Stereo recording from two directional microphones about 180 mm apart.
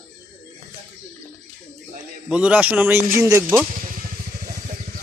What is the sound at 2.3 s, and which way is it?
A man's voice, 5° right (ahead or behind).